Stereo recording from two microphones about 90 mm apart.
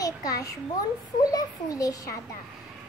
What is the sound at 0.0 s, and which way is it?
A child's voice, 40° left (ahead or behind).